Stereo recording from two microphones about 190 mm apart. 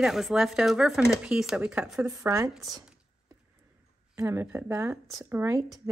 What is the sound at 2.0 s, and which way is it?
Speech, 20° right (ahead or behind).